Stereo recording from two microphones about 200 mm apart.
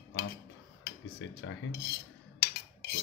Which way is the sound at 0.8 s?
70° left (ahead or behind).